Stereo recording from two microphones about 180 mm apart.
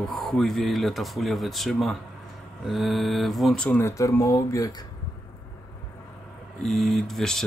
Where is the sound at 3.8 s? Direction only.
15° left (ahead or behind).